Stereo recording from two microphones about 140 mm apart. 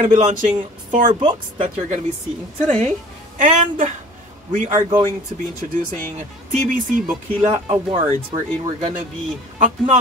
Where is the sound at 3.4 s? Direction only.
65° right (ahead or behind).